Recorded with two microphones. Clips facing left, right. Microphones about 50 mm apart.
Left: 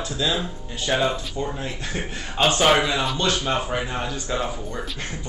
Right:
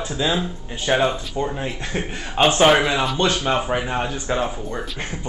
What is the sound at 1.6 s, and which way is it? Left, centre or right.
Speech, right.